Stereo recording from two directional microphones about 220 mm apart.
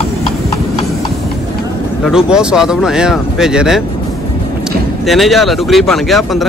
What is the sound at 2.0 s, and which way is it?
Speech, 5° right (ahead or behind).